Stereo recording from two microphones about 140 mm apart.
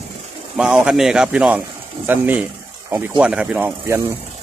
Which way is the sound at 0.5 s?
5° right (ahead or behind).